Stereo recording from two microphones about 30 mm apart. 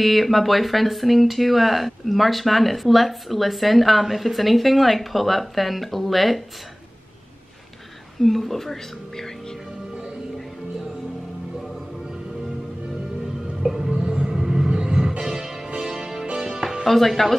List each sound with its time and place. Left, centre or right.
0.0 s speech: centre
8.2 s speech: centre
13.8 s rumble: right
14.7 s music: right
16.8 s speech: centre